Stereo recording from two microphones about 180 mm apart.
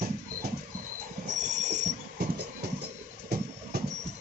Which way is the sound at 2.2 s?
60° right (ahead or behind).